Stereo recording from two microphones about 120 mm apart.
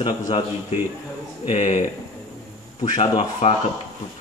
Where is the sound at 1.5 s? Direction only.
70° left (ahead or behind).